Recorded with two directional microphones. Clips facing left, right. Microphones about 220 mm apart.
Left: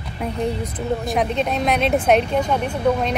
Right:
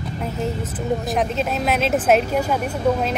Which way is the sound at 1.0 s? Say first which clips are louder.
Left 1 dB; centre (ahead or behind).